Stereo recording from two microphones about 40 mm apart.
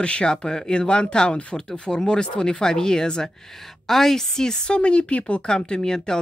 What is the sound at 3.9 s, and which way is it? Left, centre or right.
A woman's voice, centre.